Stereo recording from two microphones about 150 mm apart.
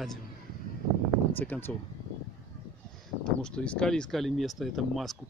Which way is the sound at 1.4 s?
10° left (ahead or behind).